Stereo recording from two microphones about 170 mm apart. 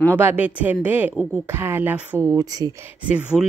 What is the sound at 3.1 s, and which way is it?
Speech, 5° right (ahead or behind).